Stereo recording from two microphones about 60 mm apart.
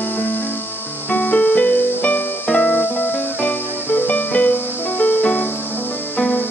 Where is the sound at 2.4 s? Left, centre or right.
Centre.